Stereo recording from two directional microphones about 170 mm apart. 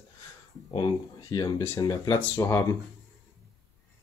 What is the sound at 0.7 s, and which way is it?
Speech, 25° left (ahead or behind).